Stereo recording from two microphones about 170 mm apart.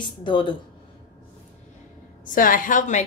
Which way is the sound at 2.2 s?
55° left (ahead or behind).